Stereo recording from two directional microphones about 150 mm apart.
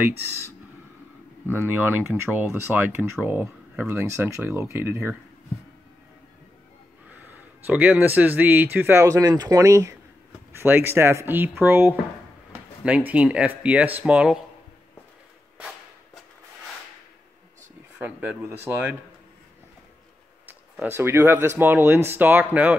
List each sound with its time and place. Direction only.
1.4 s speech: 15° right (ahead or behind)
7.1 s speech: 10° right (ahead or behind)
17.9 s speech: 10° right (ahead or behind)
20.4 s speech: 10° right (ahead or behind)